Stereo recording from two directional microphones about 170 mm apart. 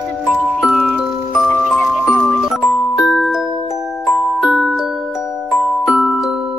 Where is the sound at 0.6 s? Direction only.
5° right (ahead or behind).